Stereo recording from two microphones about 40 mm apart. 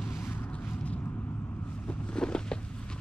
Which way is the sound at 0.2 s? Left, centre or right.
Left.